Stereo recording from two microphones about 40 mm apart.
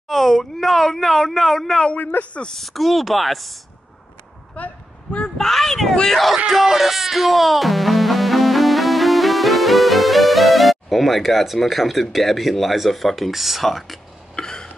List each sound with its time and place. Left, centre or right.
0.1 s speech: centre
2.0 s a man's voice: left
2.4 s speech: centre
4.6 s speech: left
5.4 s speech: centre
6.3 s speech: centre
14.3 s a sound: centre